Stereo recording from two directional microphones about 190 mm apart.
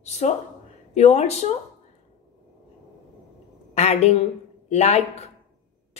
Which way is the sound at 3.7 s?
35° left (ahead or behind).